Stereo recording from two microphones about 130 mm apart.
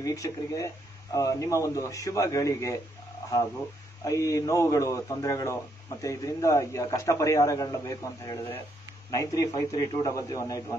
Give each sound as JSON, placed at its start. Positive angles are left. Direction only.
{"t": 0.0, "sound": "a man's voice", "side_deg": 25}